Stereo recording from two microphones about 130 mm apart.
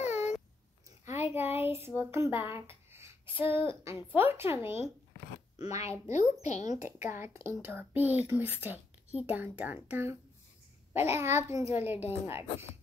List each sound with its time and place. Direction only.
0.0 s babbling: 60° left (ahead or behind)
1.1 s a sound: 15° right (ahead or behind)
3.4 s speech: 40° left (ahead or behind)
3.8 s a woman's voice: 20° right (ahead or behind)
5.8 s a child's voice: 25° right (ahead or behind)
6.1 s a woman's voice: 60° left (ahead or behind)
7.1 s a child's voice: 20° right (ahead or behind)